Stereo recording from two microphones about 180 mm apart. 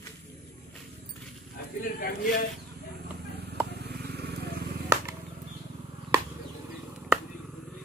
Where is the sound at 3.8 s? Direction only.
60° right (ahead or behind).